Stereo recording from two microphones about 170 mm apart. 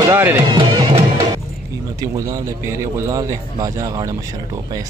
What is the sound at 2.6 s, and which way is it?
A man's voice, 20° right (ahead or behind).